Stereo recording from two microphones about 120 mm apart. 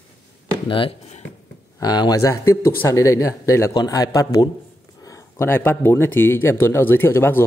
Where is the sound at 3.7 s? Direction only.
35° left (ahead or behind).